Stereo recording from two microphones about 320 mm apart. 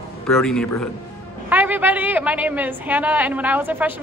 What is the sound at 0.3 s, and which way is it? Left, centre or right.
A woman's voice, centre.